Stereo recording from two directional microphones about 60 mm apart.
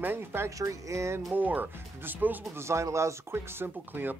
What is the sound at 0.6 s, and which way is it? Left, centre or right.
Speech, right.